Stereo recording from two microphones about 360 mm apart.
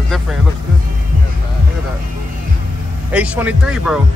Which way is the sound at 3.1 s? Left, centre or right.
Centre.